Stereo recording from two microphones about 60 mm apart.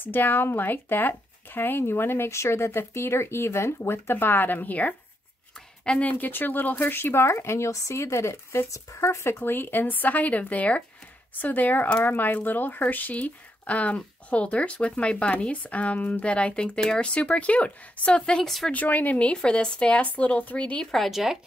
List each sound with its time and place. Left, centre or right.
0.0 s speech: left
6.1 s speech: left
9.4 s speech: left; by 18.7 s centre
18.7 s speech: left
20.8 s speech: centre